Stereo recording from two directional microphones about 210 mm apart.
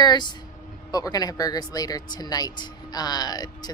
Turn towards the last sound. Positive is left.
turn(degrees=20)  # may be behind; listen again after turning